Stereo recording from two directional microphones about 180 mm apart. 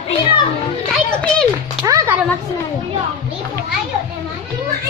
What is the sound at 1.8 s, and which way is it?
Speech, 20° right (ahead or behind).